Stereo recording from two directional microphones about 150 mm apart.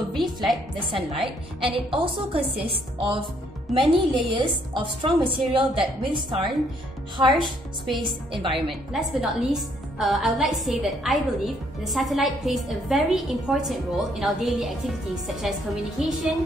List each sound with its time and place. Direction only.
0.9 s a woman's voice: 40° right (ahead or behind)
8.5 s a woman's voice: centre (ahead or behind)